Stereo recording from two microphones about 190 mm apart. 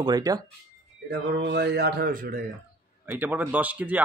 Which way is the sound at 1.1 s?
65° right (ahead or behind).